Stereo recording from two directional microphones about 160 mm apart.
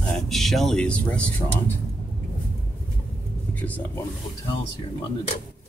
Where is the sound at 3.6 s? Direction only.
10° left (ahead or behind).